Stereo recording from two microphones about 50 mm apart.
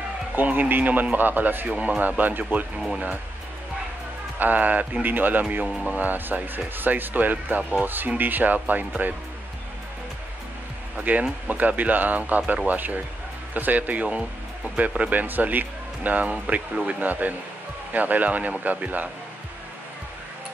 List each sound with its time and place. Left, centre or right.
0.4 s speech: right
1.7 s speech: right
4.4 s speech: right
11.0 s speech: right